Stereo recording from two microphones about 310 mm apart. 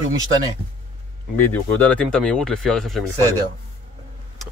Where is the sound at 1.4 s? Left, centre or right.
Centre.